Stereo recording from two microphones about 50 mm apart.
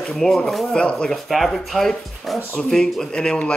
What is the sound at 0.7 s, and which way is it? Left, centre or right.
Speech, centre.